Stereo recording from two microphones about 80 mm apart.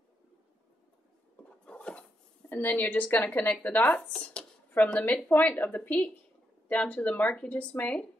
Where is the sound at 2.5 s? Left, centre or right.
Left.